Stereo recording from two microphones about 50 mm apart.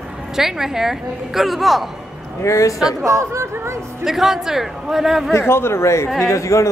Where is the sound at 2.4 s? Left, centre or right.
Left.